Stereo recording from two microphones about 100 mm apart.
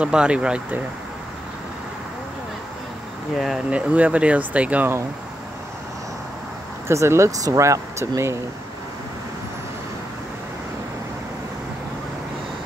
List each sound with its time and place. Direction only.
0.0 s speech: 10° right (ahead or behind)
3.3 s speech: 5° right (ahead or behind)
6.9 s speech: 30° right (ahead or behind)